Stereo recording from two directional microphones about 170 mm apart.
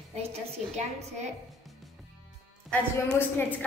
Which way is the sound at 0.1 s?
40° right (ahead or behind).